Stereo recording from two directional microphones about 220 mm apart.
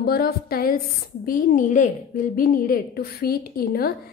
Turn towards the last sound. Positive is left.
turn(degrees=40)  # may be behind; listen again after turning